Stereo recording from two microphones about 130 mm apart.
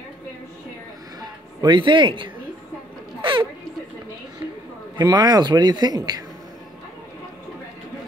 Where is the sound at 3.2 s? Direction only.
40° right (ahead or behind).